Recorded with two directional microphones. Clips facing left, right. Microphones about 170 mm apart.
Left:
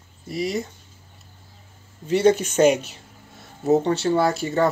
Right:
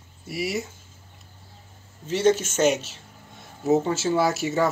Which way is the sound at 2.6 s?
5° left (ahead or behind).